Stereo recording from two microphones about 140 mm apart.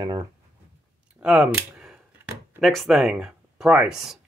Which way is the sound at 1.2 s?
5° right (ahead or behind).